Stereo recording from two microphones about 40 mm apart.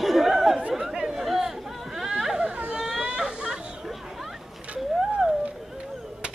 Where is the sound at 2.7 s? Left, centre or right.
Right.